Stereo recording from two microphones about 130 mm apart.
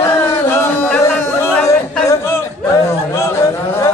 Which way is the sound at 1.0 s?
20° left (ahead or behind).